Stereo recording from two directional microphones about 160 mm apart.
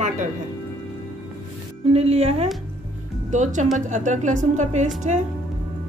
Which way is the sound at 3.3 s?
50° right (ahead or behind).